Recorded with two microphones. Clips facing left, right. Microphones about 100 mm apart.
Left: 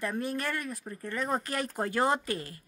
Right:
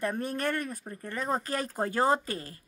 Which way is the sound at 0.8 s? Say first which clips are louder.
Even; 35° right (ahead or behind).